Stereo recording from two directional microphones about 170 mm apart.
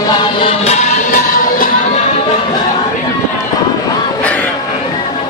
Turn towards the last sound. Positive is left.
turn(degrees=5)  # may be behind; listen again after turning